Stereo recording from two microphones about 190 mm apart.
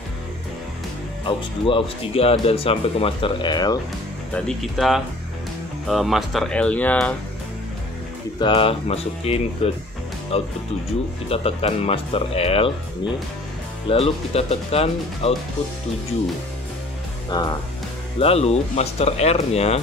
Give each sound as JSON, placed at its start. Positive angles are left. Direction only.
{"t": 1.2, "sound": "speech", "side_deg": 25}
{"t": 4.3, "sound": "speech", "side_deg": 0}
{"t": 8.4, "sound": "speech", "side_deg": 25}
{"t": 13.8, "sound": "speech", "side_deg": 30}
{"t": 17.3, "sound": "speech", "side_deg": 20}
{"t": 18.2, "sound": "speech", "side_deg": 30}